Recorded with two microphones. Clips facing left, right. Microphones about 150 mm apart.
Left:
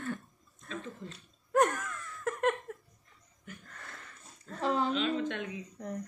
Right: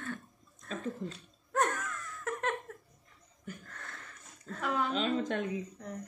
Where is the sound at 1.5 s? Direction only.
5° left (ahead or behind).